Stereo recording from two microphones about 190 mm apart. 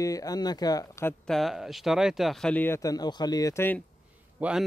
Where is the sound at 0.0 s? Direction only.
20° left (ahead or behind).